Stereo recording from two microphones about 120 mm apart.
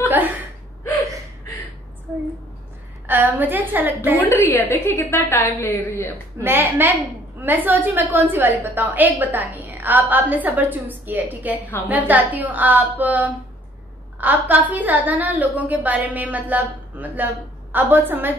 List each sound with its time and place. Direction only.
3.1 s a woman's voice: 15° right (ahead or behind)
4.2 s a woman's voice: 20° left (ahead or behind)
6.4 s a woman's voice: 20° right (ahead or behind)